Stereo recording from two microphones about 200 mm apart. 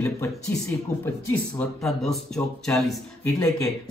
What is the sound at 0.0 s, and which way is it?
Speech, 15° left (ahead or behind).